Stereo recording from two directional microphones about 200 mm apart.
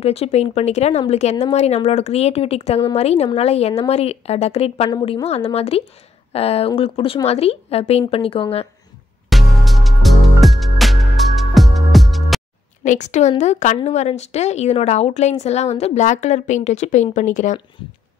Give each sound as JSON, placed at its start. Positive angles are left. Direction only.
{"t": 0.0, "sound": "a woman's voice", "side_deg": 30}
{"t": 9.3, "sound": "music", "side_deg": 0}
{"t": 12.8, "sound": "speech", "side_deg": 35}